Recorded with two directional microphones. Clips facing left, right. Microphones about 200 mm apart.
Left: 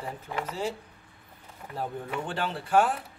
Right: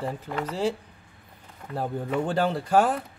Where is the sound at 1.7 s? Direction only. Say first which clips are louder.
Right 6 dB; 40° right (ahead or behind).